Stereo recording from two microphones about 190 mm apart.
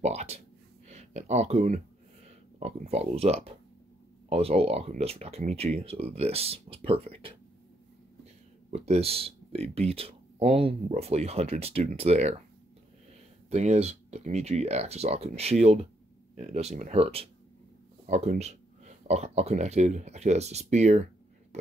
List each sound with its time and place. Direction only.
0.0 s speech: 35° right (ahead or behind)
8.6 s speech: 35° right (ahead or behind)
13.5 s speech: 35° right (ahead or behind)